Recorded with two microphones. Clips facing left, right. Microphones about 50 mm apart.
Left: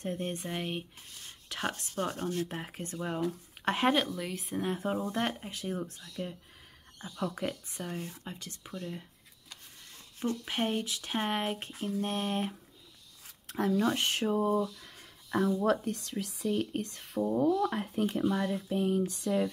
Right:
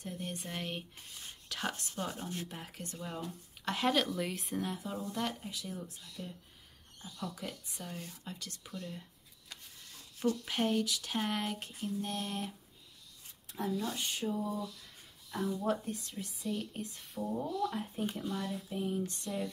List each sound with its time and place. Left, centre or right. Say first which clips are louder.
0.0 s speech: left 6 dB; left
0.5 s speech: left 4 dB; centre
2.6 s speech: left 6 dB; left
4.0 s speech: even; centre
4.6 s speech: left 7 dB; left
10.4 s speech: even; left
12.0 s speech: left 8 dB; left
13.5 s speech: left 8 dB; left
15.3 s speech: left 6 dB; left